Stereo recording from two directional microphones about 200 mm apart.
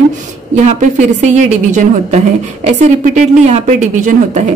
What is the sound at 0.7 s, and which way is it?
A woman's voice, 40° right (ahead or behind).